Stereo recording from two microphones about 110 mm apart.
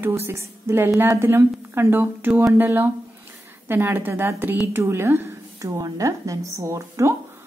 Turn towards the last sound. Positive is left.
turn(degrees=-25)  # may be behind; listen again after turning